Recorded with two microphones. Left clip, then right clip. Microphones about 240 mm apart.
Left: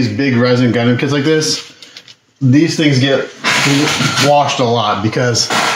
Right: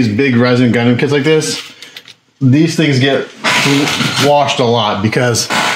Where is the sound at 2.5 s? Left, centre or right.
Right.